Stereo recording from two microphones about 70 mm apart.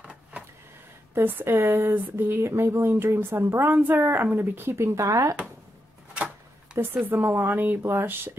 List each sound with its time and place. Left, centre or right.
0.0 s a sound: centre
1.1 s speech: right
6.8 s speech: right
7.2 s a woman's voice: right
7.4 s speech: right